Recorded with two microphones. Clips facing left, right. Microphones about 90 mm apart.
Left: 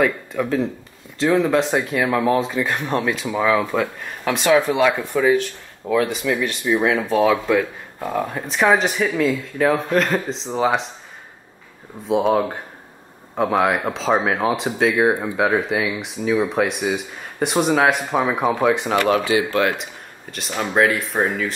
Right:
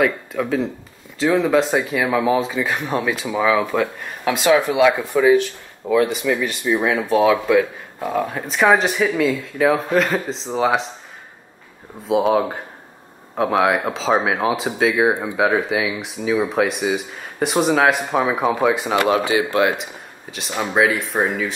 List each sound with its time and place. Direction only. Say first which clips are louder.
0.0 s speech: even; centre (ahead or behind)
12.1 s speech: right 1 dB; centre (ahead or behind)
19.0 s speech: even; 20° right (ahead or behind)
19.7 s speech: right 2 dB; centre (ahead or behind)